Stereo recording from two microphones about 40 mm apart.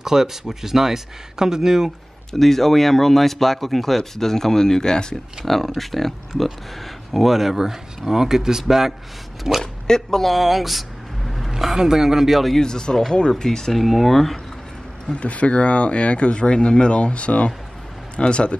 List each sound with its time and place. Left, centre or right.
0.0 s speech: centre
2.3 s speech: centre
5.4 s speech: centre
7.2 s speech: centre
9.6 s speech: centre
10.2 s vehicle: centre
11.5 s speech: centre
12.5 s speech: centre
13.7 s speech: centre
15.1 s speech: left